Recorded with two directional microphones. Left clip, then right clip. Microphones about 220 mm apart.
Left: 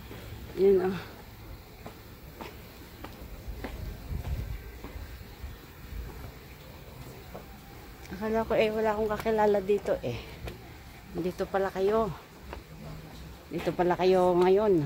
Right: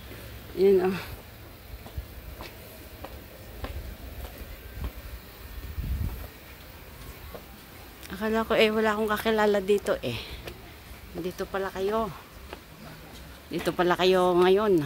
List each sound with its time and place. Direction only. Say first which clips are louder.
0.7 s speech: right 2 dB; 25° right (ahead or behind)
8.2 s speech: right 3 dB; 20° right (ahead or behind)
11.2 s speech: left 2 dB; 5° right (ahead or behind)
13.5 s speech: right 2 dB; 20° right (ahead or behind)